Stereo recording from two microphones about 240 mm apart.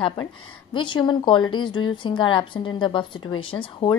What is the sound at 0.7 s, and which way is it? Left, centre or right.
A woman's voice, centre.